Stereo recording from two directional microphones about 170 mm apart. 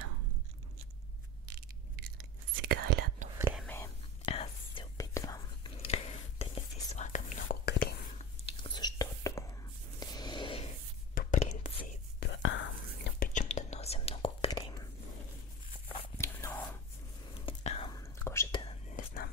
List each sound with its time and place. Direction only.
2.6 s whispering: 70° right (ahead or behind)
3.6 s whispering: 15° left (ahead or behind)
4.3 s whispering: 35° left (ahead or behind)
4.9 s whispering: 20° left (ahead or behind)
5.8 s whispering: 35° left (ahead or behind); by 7.7 s 50° left (ahead or behind)
8.2 s whispering: 30° left (ahead or behind)
9.9 s a sound: 25° left (ahead or behind)
11.1 s whispering: 50° left (ahead or behind)
12.2 s whispering: 90° left
13.3 s whispering: 45° left (ahead or behind); by 14.9 s 30° left (ahead or behind)
16.2 s whispering: 15° left (ahead or behind)
17.3 s whispering: 35° left (ahead or behind)
18.2 s whispering: 15° left (ahead or behind)
18.9 s whispering: 55° left (ahead or behind)